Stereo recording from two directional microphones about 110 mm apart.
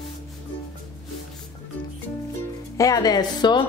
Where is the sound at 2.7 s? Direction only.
30° left (ahead or behind).